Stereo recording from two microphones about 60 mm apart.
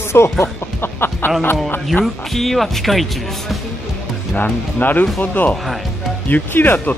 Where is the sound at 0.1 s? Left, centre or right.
Left.